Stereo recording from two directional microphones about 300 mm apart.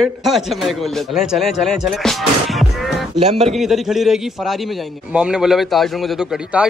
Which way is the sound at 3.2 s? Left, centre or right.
Right.